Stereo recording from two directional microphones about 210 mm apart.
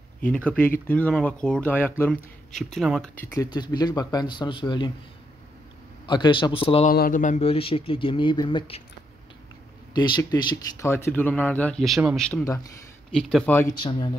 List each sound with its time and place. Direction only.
0.2 s speech: 5° left (ahead or behind)
3.3 s speech: 20° left (ahead or behind)
6.0 s speech: 20° left (ahead or behind)
6.9 s speech: 40° left (ahead or behind); by 8.8 s 25° left (ahead or behind)
9.9 s speech: 20° left (ahead or behind)
13.7 s speech: 20° left (ahead or behind)